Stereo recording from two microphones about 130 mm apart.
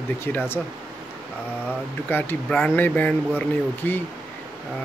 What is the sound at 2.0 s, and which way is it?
Speech, 15° left (ahead or behind).